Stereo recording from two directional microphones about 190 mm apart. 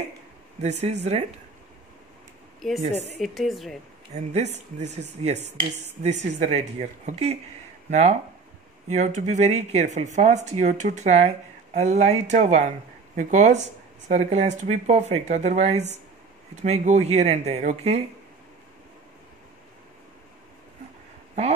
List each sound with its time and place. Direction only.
0.6 s speech: 35° right (ahead or behind)
2.8 s speech: 35° right (ahead or behind)
3.2 s a woman's voice: centre (ahead or behind)
4.1 s speech: 35° right (ahead or behind)